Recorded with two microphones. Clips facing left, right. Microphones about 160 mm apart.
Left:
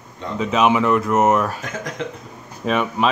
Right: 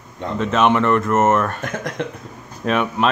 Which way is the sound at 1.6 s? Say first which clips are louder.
Right 3 dB; 60° right (ahead or behind).